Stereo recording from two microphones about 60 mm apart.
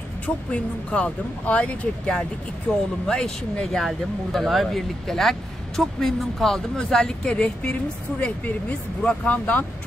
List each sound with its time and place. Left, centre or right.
0.5 s speech: left
2.7 s speech: centre
8.2 s speech: left